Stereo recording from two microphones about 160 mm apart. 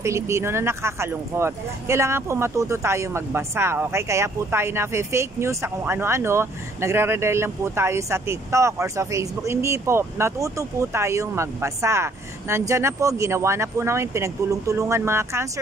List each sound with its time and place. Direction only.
0.0 s speech: 20° right (ahead or behind)